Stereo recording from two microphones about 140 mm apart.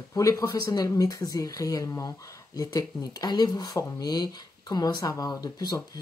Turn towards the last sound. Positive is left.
turn(degrees=25)  # may be behind; listen again after turning